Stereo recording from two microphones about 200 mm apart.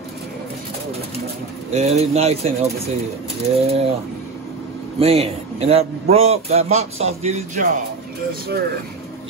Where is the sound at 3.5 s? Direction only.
30° right (ahead or behind).